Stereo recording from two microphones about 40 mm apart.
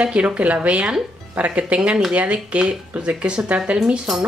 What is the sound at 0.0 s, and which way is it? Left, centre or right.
Speech, right.